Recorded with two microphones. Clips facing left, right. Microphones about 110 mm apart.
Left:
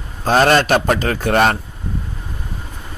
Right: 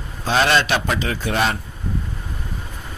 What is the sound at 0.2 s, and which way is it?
A man's voice, 45° left (ahead or behind).